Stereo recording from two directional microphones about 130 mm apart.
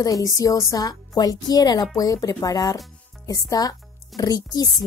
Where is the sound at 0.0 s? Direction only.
25° left (ahead or behind).